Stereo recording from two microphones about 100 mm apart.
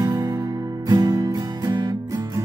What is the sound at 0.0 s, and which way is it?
Music, 40° right (ahead or behind).